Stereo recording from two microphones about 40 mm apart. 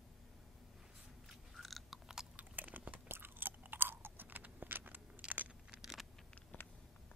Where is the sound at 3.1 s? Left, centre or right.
Right.